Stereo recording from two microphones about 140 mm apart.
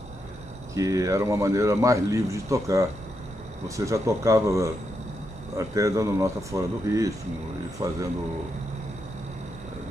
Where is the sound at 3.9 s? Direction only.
20° right (ahead or behind).